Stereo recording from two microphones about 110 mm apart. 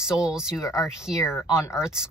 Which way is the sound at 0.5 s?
25° left (ahead or behind).